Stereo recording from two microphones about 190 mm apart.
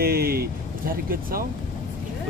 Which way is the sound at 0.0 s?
55° right (ahead or behind).